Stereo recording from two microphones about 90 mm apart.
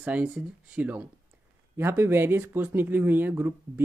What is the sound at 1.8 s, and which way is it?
Speech, 25° right (ahead or behind).